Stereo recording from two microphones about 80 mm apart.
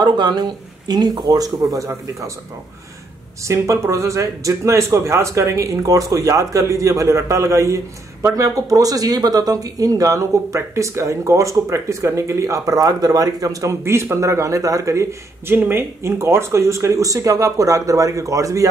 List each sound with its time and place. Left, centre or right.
0.0 s speech: right
3.4 s speech: right
15.5 s speech: right